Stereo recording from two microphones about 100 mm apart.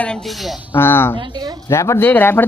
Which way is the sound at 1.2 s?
45° right (ahead or behind).